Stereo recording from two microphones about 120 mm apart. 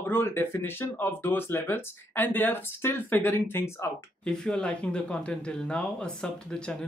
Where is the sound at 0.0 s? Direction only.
15° left (ahead or behind).